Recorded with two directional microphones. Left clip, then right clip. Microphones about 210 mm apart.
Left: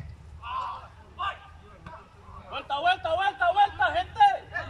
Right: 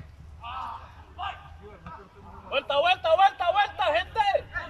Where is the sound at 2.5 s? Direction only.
45° right (ahead or behind).